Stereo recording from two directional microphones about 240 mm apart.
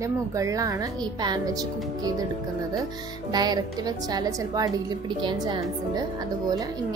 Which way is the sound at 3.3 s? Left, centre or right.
Centre.